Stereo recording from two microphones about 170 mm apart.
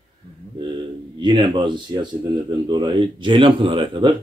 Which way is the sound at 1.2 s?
25° right (ahead or behind).